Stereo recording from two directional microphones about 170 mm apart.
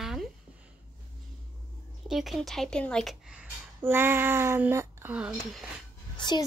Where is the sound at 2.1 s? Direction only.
Centre (ahead or behind).